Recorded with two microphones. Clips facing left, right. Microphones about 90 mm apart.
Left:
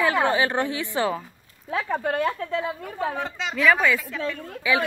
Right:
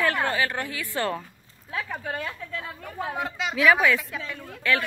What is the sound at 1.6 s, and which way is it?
Speech, 75° left (ahead or behind).